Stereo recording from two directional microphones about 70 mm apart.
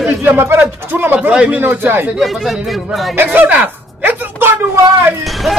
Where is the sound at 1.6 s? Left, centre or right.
Right.